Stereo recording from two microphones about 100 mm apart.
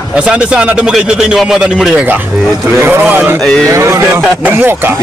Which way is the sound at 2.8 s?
20° right (ahead or behind).